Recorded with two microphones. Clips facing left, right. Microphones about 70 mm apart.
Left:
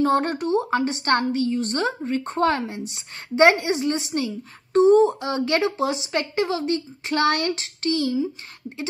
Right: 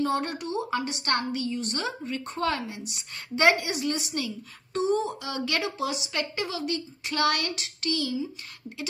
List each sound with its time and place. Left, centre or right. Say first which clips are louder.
0.0 s a woman's voice: left 7 dB; left